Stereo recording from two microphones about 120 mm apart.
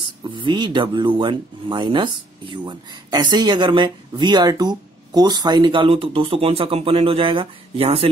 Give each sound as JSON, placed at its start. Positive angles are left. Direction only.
{"t": 0.2, "sound": "speech", "side_deg": -40}